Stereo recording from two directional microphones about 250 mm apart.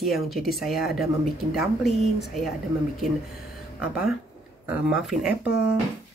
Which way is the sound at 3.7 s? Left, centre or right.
Centre.